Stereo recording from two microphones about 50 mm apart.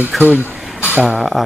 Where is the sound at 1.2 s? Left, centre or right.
Centre.